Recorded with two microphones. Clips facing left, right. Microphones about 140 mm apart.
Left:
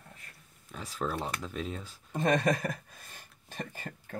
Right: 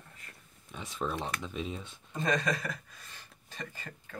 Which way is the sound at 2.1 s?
55° left (ahead or behind).